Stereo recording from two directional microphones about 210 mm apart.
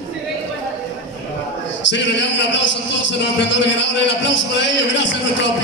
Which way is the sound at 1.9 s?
60° left (ahead or behind).